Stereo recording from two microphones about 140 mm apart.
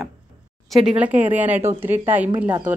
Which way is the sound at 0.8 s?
10° right (ahead or behind).